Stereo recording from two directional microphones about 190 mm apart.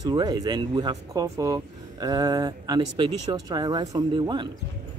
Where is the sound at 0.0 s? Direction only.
20° right (ahead or behind).